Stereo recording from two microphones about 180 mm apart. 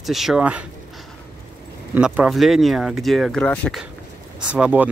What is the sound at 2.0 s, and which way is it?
Speech, 5° right (ahead or behind).